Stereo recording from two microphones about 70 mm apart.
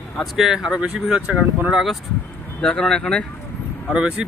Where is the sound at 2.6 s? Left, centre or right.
Centre.